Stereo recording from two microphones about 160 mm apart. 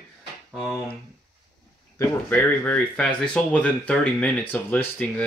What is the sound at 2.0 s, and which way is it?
Speech, 15° left (ahead or behind).